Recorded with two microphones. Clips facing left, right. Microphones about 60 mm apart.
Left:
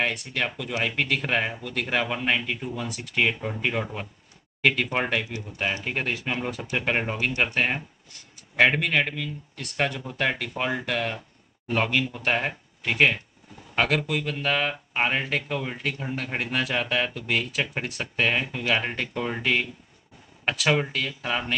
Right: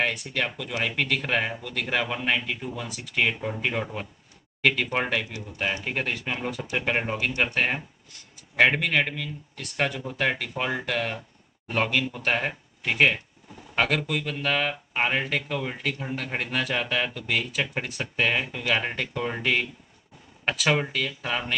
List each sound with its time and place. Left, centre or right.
0.0 s speech: centre